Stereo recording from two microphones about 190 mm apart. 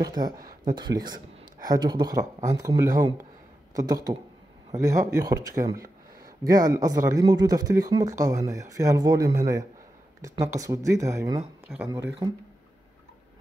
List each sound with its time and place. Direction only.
0.0 s speech: 20° right (ahead or behind)
0.4 s a sound: 45° right (ahead or behind)
0.7 s speech: 20° right (ahead or behind)
11.7 s speech: centre (ahead or behind)